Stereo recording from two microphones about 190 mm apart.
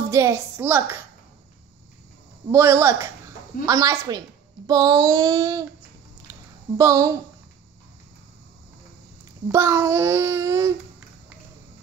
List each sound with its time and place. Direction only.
0.1 s a child's voice: 15° right (ahead or behind)
2.5 s a child's voice: 15° right (ahead or behind)
4.6 s child singing: 20° right (ahead or behind)
6.3 s a sound: 15° right (ahead or behind)
6.8 s a child's voice: 15° right (ahead or behind)
9.5 s a child's voice: 15° right (ahead or behind)